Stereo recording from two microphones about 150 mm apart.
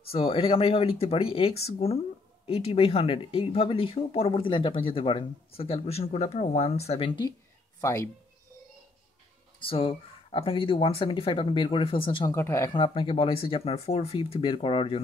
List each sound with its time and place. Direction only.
0.1 s speech: 40° left (ahead or behind)
7.8 s speech: 20° left (ahead or behind)
9.6 s speech: 35° left (ahead or behind)
12.3 s speech: 20° left (ahead or behind)
12.7 s speech: 35° left (ahead or behind)